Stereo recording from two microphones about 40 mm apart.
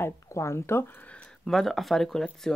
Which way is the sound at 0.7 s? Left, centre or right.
Left.